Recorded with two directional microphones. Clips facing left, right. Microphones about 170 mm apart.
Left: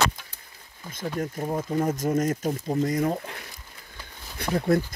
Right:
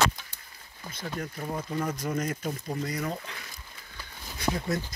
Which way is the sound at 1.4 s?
25° left (ahead or behind).